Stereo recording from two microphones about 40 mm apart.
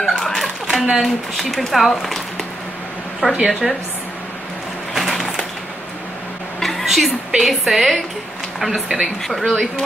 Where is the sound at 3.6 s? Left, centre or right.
Centre.